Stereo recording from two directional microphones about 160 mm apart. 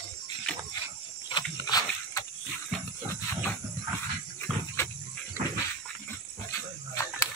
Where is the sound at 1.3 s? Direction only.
25° left (ahead or behind).